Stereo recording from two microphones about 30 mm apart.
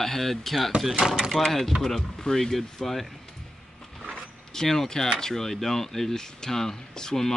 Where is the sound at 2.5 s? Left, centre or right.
Centre.